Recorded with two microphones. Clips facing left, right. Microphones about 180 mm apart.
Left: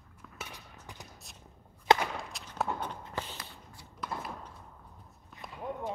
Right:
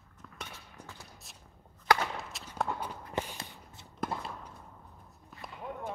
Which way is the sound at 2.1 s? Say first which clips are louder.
Even; centre (ahead or behind).